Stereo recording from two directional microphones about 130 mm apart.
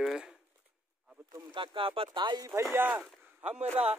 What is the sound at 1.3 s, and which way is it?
Speech, 40° right (ahead or behind).